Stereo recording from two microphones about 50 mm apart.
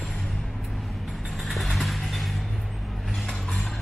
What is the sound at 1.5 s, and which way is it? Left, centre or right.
Music, centre.